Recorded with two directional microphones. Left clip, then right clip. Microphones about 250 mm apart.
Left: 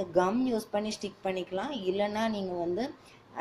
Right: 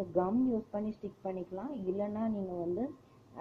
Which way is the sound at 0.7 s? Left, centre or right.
Centre.